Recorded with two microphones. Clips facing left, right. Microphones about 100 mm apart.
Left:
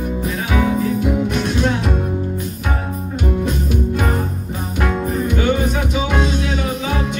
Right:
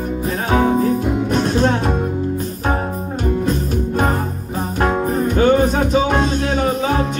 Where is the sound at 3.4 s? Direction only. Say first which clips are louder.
Right 1 dB; 40° right (ahead or behind).